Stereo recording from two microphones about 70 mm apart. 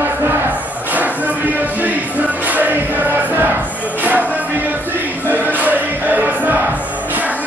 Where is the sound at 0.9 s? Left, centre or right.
Right.